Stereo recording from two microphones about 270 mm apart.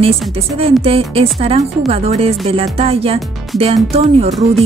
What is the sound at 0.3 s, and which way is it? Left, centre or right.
Speech, right.